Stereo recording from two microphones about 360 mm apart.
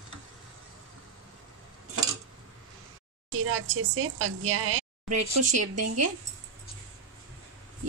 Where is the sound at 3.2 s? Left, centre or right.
Right.